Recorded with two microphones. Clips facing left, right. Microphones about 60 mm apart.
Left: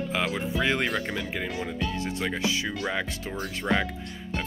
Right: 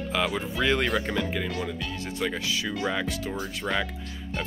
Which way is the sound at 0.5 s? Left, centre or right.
Left.